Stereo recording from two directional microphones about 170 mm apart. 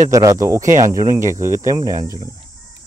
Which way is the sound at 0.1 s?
20° right (ahead or behind).